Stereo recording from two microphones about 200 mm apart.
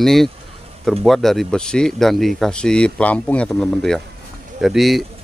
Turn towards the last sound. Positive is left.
turn(degrees=0)  # may be behind; listen again after turning